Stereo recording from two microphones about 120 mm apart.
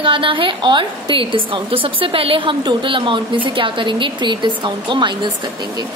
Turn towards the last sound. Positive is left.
turn(degrees=-40)  # may be behind; listen again after turning